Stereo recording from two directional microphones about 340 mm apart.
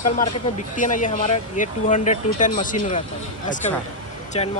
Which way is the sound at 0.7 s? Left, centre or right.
Left.